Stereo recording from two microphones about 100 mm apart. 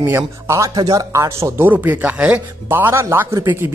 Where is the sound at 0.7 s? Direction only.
40° right (ahead or behind).